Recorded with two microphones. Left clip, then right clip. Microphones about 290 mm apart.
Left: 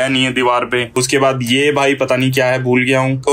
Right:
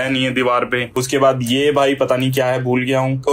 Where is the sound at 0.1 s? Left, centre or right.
Centre.